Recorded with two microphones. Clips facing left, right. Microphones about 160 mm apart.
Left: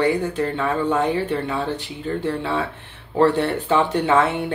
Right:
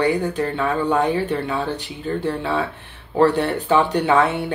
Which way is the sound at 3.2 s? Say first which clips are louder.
Right 1 dB; 20° left (ahead or behind).